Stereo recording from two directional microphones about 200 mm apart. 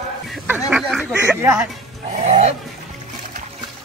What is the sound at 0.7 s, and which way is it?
Speech, 5° right (ahead or behind).